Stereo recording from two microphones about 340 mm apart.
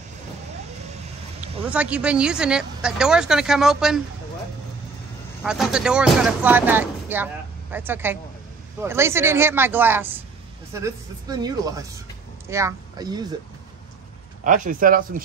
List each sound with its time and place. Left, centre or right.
1.7 s speech: centre
5.4 s speech: centre
14.4 s speech: right